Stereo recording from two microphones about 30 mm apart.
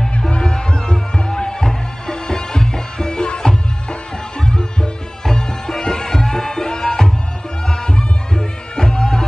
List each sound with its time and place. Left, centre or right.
0.4 s music: left
5.7 s music: centre